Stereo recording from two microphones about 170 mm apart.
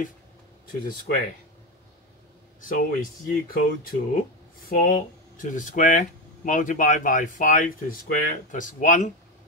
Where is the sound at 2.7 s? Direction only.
55° left (ahead or behind).